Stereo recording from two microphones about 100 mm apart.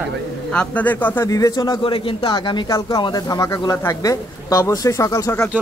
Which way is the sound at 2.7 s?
30° left (ahead or behind).